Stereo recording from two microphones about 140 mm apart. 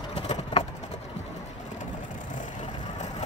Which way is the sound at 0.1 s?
40° left (ahead or behind).